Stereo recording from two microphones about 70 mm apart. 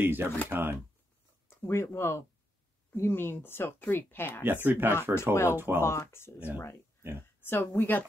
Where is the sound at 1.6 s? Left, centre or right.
Left.